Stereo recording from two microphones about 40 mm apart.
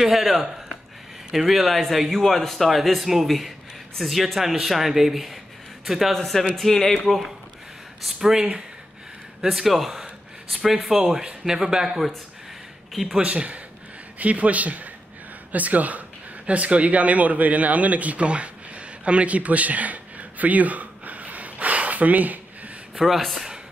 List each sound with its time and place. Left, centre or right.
0.0 s speech: centre
6.1 s speech: centre
8.0 s speech: centre
12.9 s speech: centre
13.2 s speech: right
23.0 s speech: centre